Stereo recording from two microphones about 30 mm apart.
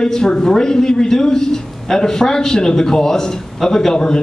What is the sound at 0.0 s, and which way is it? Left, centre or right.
A man's voice, left.